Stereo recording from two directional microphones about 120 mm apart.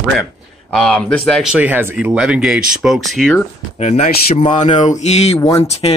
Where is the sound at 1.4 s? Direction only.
10° right (ahead or behind).